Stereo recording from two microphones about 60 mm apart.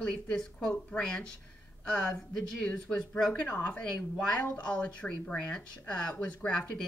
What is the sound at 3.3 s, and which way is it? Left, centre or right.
A woman's voice, left.